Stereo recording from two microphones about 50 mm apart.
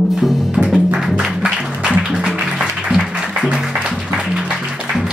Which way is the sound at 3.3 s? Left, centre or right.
Centre.